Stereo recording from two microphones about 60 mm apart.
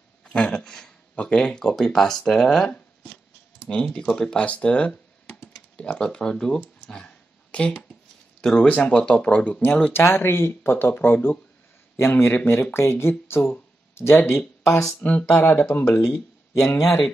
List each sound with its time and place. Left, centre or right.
0.2 s speech: centre
3.6 s speech: centre
6.9 s a sound: centre
8.4 s speech: centre
8.6 s speech: left
9.9 s speech: left
14.7 s speech: left
15.0 s speech: left
15.3 s speech: left
16.5 s speech: left